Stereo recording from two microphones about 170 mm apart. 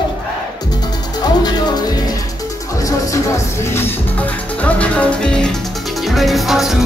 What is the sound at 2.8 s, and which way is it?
Music, 20° left (ahead or behind).